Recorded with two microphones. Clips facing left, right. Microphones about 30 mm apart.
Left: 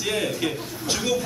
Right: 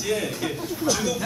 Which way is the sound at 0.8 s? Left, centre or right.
Left.